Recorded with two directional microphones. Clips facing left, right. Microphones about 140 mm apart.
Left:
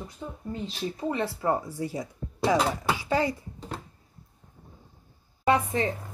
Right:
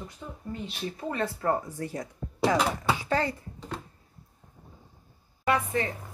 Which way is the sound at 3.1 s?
10° left (ahead or behind).